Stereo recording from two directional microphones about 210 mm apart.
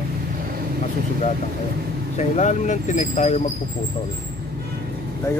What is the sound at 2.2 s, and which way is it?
Speech, 35° left (ahead or behind).